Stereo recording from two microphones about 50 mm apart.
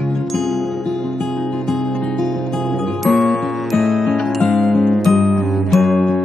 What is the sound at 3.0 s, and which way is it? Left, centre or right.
Music, centre.